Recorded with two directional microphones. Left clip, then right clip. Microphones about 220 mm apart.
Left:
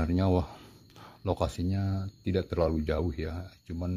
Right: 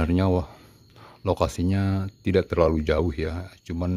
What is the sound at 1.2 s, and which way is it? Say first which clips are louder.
Speech: right 7 dB; 15° right (ahead or behind).